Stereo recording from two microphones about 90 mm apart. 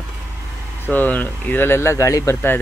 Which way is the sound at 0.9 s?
20° left (ahead or behind).